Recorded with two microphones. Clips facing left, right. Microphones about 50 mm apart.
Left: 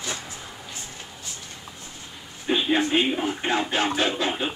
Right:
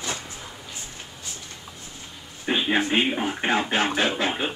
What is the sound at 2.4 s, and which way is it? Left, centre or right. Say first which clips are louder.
Speech: left 1 dB; right.